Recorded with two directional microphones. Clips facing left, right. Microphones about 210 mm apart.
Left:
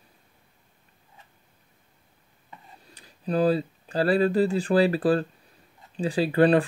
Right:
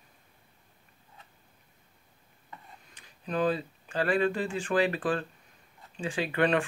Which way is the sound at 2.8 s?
35° left (ahead or behind).